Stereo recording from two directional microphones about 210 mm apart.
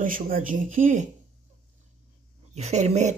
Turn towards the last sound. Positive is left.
turn(degrees=-35)  # may be behind; listen again after turning